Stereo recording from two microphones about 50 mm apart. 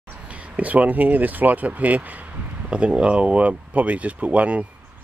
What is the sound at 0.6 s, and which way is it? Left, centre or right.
Speech, right.